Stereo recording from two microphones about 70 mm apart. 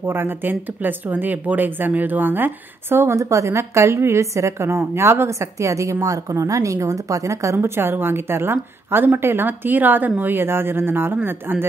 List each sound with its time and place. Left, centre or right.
0.0 s speech: right